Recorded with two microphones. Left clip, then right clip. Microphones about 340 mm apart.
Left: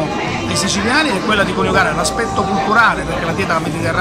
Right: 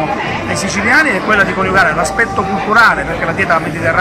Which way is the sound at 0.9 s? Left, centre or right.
Centre.